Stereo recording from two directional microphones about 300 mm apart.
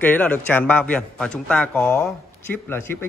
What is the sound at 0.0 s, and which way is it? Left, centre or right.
A man's voice, centre.